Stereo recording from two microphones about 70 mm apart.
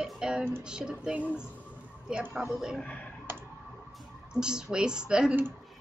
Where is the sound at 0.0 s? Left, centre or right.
Centre.